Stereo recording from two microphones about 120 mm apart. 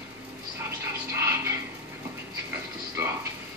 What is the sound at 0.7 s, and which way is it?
Television, 25° right (ahead or behind).